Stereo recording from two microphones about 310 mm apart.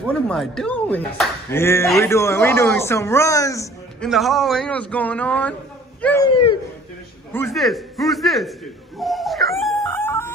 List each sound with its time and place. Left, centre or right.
0.0 s a man's voice: centre
6.3 s speech: centre
7.3 s a man's voice: centre
9.0 s dog: centre